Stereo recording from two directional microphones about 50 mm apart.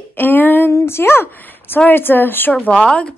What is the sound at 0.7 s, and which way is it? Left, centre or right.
Speech, left.